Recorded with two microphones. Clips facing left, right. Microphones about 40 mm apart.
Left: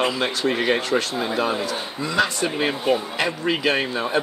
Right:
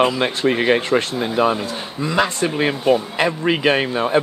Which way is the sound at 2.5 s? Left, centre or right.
Centre.